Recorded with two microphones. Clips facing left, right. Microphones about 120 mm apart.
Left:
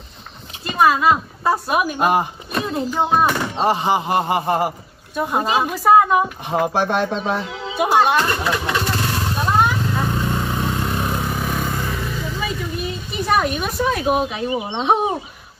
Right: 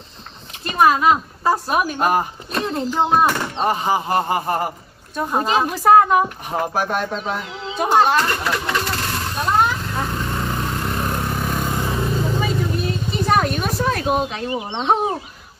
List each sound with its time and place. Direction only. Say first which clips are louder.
0.7 s a woman's voice: even; centre (ahead or behind)
3.6 s speech: left 1 dB; 20° left (ahead or behind)
5.1 s speech: even; 5° left (ahead or behind)
6.7 s speech: left 3 dB; 25° left (ahead or behind)
7.7 s speech: even; 5° left (ahead or behind)
8.5 s vehicle: left 1 dB; 5° left (ahead or behind)
11.9 s vehicle: right 4 dB; 35° right (ahead or behind)
13.1 s speech: even; 5° left (ahead or behind)